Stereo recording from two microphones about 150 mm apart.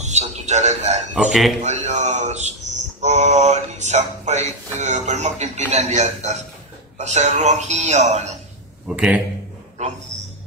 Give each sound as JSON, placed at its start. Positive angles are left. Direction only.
{"t": 0.0, "sound": "music", "side_deg": -50}
{"t": 1.1, "sound": "a man's voice", "side_deg": 0}
{"t": 1.6, "sound": "speech", "side_deg": -50}
{"t": 8.8, "sound": "a man's voice", "side_deg": -5}
{"t": 9.8, "sound": "speech", "side_deg": -50}